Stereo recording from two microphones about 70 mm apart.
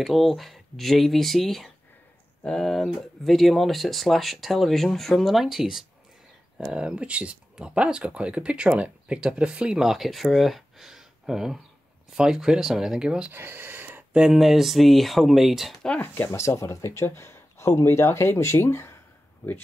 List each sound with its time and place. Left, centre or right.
0.0 s speech: centre
13.3 s a sound: right
14.1 s speech: centre
16.0 s speech: left